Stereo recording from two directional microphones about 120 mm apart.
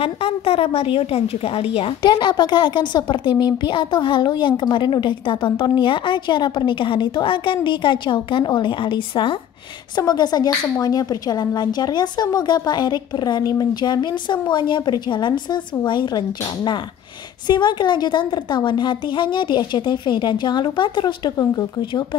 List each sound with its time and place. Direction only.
0.0 s a woman's voice: 50° left (ahead or behind); by 22.0 s 35° left (ahead or behind)